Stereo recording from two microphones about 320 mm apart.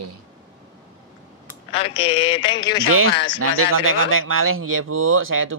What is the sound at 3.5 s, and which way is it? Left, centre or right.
Speech, right.